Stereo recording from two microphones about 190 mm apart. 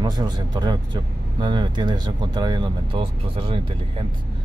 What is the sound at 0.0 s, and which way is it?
Speech, 20° right (ahead or behind).